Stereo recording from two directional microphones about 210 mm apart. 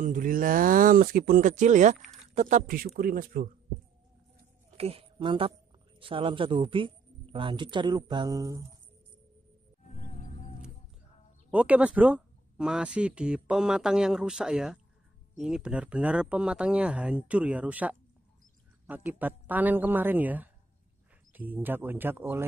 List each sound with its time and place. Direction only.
0.0 s speech: 40° right (ahead or behind)
4.6 s a woman's voice: 30° right (ahead or behind)
9.8 s music: 35° left (ahead or behind)
11.5 s speech: 5° right (ahead or behind)